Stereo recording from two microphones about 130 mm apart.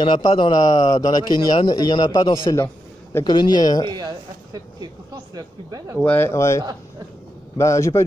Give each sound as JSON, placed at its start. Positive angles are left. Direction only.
{"t": 0.0, "sound": "a man's voice", "side_deg": 40}
{"t": 2.5, "sound": "a sound", "side_deg": 20}
{"t": 3.3, "sound": "a man's voice", "side_deg": 35}
{"t": 3.9, "sound": "speech", "side_deg": -30}
{"t": 6.0, "sound": "speech", "side_deg": 15}